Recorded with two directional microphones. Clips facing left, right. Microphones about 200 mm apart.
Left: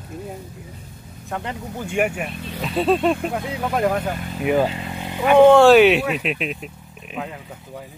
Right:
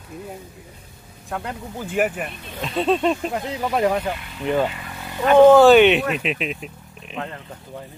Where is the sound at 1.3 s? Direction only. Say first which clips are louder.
Left 1 dB; centre (ahead or behind).